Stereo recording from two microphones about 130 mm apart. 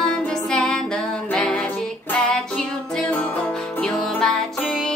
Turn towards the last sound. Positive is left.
turn(degrees=5)  # may be behind; listen again after turning